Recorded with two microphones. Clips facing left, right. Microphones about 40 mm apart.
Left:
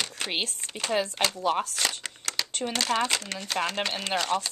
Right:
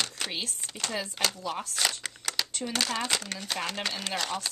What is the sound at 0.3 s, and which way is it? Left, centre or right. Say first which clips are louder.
Speech: left 5 dB; left.